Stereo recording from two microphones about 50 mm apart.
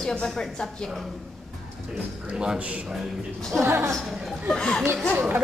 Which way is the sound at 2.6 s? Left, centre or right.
Right.